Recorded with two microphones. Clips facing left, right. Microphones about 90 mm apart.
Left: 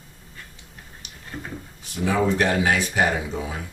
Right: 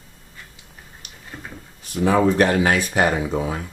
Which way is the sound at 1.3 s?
5° right (ahead or behind).